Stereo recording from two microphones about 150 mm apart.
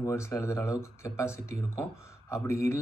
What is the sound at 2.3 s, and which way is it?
Speech, 20° left (ahead or behind).